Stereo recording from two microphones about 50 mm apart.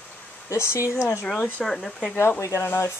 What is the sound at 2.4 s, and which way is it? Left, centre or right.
Speech, left.